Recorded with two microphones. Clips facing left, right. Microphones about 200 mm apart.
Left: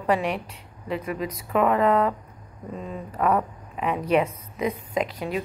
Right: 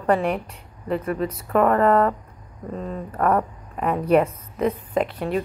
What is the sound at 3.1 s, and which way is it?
Speech, 10° left (ahead or behind).